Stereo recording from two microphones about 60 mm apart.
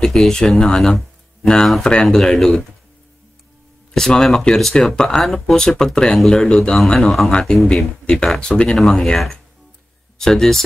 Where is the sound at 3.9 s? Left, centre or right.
Centre.